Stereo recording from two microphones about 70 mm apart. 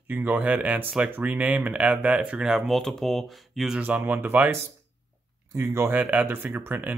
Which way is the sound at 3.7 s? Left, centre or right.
Right.